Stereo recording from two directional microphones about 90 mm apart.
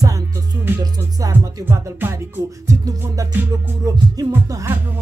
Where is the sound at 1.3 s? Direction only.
30° right (ahead or behind).